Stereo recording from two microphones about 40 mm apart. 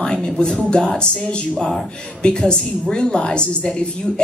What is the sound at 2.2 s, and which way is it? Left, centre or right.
A woman's voice, left.